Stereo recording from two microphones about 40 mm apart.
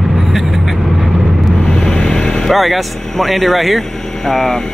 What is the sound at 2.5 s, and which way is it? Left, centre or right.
Speech, centre.